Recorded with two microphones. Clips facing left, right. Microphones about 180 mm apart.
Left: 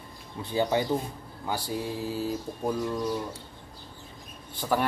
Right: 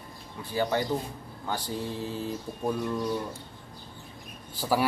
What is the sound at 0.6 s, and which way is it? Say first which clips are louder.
Speech: left 2 dB; 15° left (ahead or behind).